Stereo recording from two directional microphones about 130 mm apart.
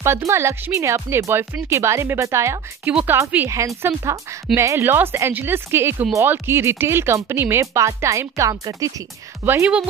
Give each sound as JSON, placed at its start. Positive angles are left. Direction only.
{"t": 0.0, "sound": "speech", "side_deg": -20}
{"t": 2.9, "sound": "a woman's voice", "side_deg": -10}
{"t": 3.4, "sound": "a woman's voice", "side_deg": -25}